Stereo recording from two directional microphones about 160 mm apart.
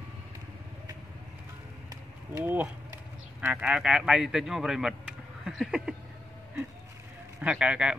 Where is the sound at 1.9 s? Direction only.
15° right (ahead or behind).